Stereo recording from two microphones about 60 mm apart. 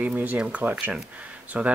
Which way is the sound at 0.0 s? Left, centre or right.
Right.